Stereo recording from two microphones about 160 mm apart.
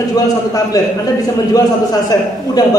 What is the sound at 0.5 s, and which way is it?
A woman's voice, 20° left (ahead or behind).